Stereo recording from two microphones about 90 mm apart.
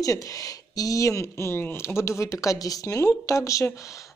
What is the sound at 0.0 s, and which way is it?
Speech, 40° left (ahead or behind).